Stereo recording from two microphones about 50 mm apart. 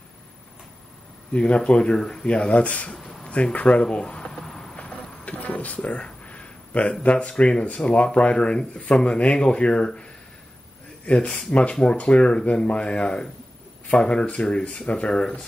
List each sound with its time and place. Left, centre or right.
1.3 s speech: left
2.2 s speech: left
3.0 s a sound: centre
3.5 s a sound: left
4.7 s speech: left
11.1 s speech: left